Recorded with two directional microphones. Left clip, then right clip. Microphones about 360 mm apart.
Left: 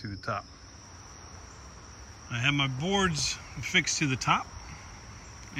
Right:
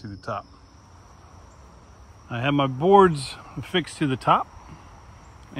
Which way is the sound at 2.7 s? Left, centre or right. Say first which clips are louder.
Right 13 dB; centre.